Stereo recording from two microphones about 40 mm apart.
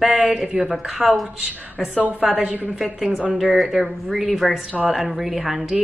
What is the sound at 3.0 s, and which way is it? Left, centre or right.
Speech, right.